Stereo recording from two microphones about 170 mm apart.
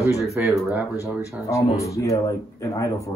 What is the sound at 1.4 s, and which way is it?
Speech, 20° left (ahead or behind).